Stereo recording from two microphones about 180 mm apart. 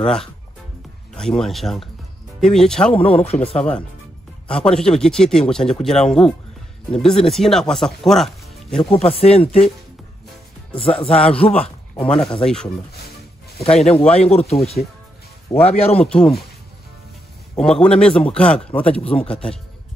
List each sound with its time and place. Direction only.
0.0 s speech: 5° left (ahead or behind)
2.9 s speech: 30° left (ahead or behind)
3.5 s speech: 5° left (ahead or behind)
8.9 s speech: 35° left (ahead or behind)
10.8 s speech: 30° left (ahead or behind)
11.1 s speech: 5° left (ahead or behind)
13.7 s speech: centre (ahead or behind)
14.1 s speech: 35° left (ahead or behind)
16.1 s speech: 5° left (ahead or behind)
17.6 s speech: 5° left (ahead or behind)